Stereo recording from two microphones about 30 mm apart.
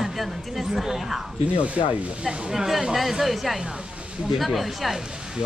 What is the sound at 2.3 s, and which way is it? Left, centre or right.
A man's voice, centre.